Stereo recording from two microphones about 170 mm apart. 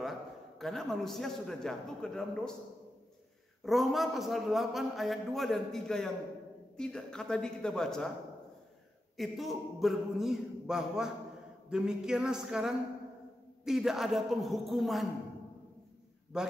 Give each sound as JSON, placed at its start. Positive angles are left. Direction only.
{"t": 0.6, "sound": "a man's voice", "side_deg": 0}
{"t": 3.6, "sound": "a man's voice", "side_deg": 0}
{"t": 9.1, "sound": "a man's voice", "side_deg": 0}
{"t": 16.3, "sound": "a man's voice", "side_deg": -5}